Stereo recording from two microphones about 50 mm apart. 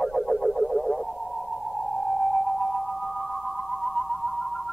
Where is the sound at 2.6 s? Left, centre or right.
Centre.